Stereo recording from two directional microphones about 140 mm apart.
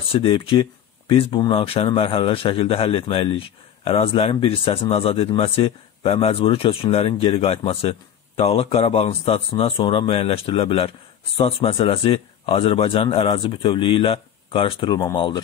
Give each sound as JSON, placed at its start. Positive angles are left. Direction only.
{"t": 0.1, "sound": "a man's voice", "side_deg": 40}